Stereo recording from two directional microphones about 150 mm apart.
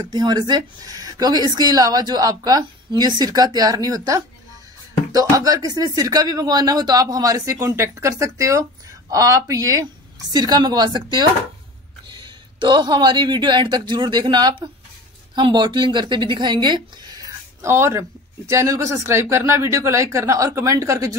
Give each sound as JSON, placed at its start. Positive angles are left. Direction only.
{"t": 0.0, "sound": "speech", "side_deg": -30}